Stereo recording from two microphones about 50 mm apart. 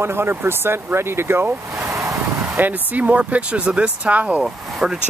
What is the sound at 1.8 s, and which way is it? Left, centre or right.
Vehicle, right.